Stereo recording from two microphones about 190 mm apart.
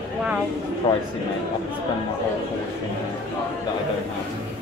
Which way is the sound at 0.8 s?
20° left (ahead or behind).